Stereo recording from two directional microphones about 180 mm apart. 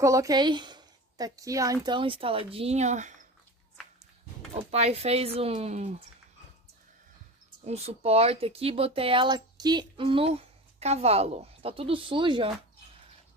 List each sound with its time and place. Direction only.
0.0 s a woman's voice: 20° right (ahead or behind); by 3.2 s 40° right (ahead or behind)
4.6 s speech: 35° right (ahead or behind)
7.6 s speech: 35° right (ahead or behind)